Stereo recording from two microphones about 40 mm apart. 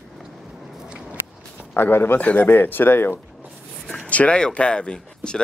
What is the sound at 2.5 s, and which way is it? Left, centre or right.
Speech, left.